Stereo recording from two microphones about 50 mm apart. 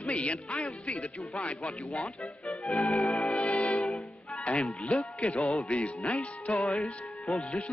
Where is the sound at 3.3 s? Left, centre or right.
Left.